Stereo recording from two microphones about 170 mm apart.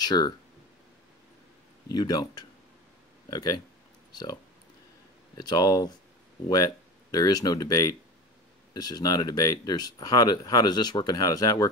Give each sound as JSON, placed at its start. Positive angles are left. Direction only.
{"t": 0.0, "sound": "speech", "side_deg": 25}
{"t": 1.9, "sound": "speech", "side_deg": 25}
{"t": 5.4, "sound": "speech", "side_deg": 25}